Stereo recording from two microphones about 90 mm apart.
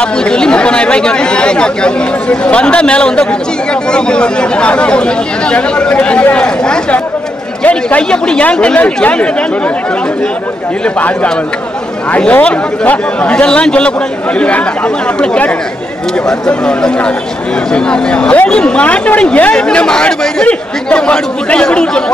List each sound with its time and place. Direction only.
0.0 s speech: 10° left (ahead or behind)
11.0 s speech: 15° left (ahead or behind)
15.1 s speech: 15° left (ahead or behind)